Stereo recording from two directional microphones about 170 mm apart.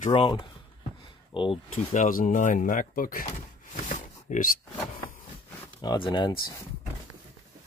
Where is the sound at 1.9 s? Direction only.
50° left (ahead or behind).